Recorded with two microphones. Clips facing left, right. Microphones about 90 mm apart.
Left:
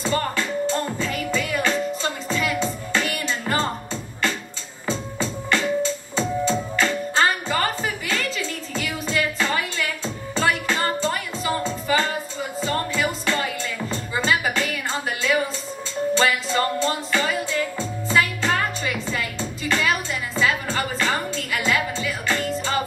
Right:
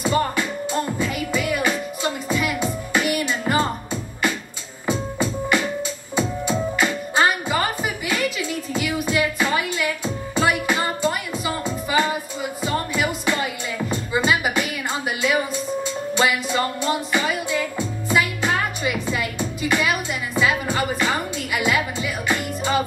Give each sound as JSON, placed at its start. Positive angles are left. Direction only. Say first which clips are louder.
{"t": 0.0, "sound": "music", "louder": "right 3 dB", "side_deg": -15}